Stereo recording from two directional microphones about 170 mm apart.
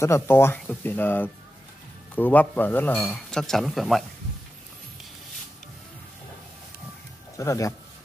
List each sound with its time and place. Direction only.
0.0 s speech: 15° left (ahead or behind); by 4.0 s centre (ahead or behind)
7.3 s speech: 20° left (ahead or behind)